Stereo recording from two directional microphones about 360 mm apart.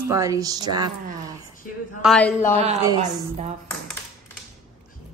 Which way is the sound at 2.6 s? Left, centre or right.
Centre.